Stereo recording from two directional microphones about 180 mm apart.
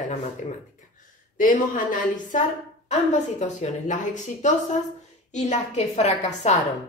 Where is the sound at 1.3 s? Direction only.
50° left (ahead or behind).